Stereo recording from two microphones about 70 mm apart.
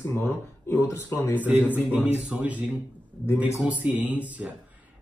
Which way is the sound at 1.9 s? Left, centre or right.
Right.